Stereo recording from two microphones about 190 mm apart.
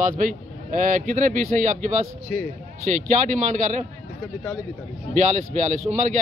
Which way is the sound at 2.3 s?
5° left (ahead or behind).